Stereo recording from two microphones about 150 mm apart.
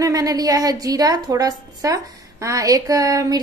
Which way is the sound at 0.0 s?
25° right (ahead or behind).